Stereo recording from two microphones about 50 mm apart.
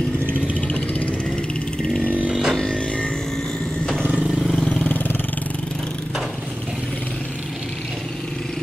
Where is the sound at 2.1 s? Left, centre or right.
Right.